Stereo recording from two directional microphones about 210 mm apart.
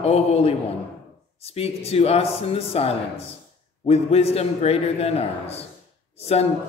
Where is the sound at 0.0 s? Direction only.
30° left (ahead or behind).